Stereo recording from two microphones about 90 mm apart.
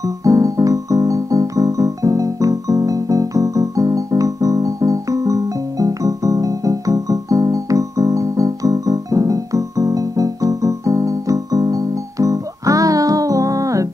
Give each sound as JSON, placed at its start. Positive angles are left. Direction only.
{"t": 0.2, "sound": "music", "side_deg": -40}